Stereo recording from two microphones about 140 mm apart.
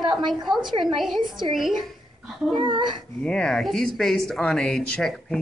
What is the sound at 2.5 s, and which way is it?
Speech, 35° right (ahead or behind).